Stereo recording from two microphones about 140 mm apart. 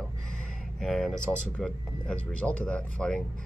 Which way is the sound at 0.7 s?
Centre (ahead or behind).